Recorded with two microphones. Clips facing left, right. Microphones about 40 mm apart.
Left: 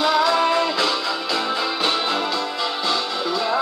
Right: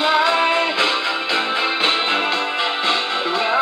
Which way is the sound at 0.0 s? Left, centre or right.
Right.